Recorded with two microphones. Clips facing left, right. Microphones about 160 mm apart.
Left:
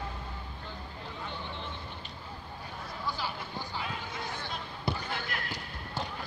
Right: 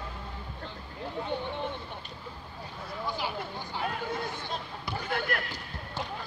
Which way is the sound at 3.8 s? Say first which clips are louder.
Right 6 dB; 55° right (ahead or behind).